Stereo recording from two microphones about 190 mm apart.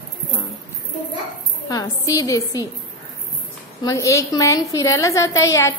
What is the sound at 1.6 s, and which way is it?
A woman's voice, 20° left (ahead or behind).